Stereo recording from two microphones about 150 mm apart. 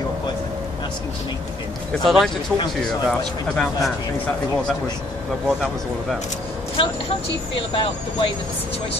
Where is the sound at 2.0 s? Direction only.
Centre (ahead or behind).